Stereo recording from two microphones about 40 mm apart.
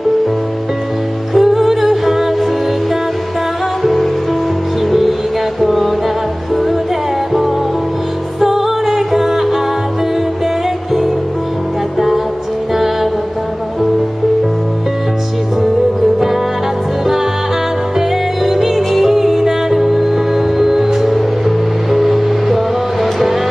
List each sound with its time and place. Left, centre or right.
1.3 s music: centre
3.8 s music: centre
5.6 s music: centre
8.4 s music: centre
12.7 s music: centre
17.9 s music: centre